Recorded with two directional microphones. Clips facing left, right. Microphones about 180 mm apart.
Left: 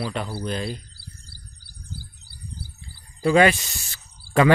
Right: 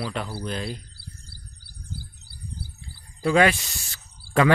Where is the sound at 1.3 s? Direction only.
55° right (ahead or behind).